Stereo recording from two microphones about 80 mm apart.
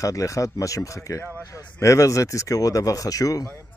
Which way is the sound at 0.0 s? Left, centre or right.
Left.